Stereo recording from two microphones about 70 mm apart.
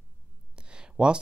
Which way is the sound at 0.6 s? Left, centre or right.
Centre.